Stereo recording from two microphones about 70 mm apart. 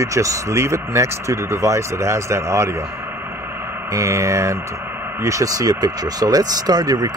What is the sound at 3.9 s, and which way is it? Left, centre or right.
Speech, right.